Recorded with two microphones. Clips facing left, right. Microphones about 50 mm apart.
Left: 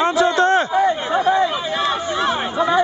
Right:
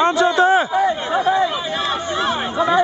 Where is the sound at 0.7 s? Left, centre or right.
Centre.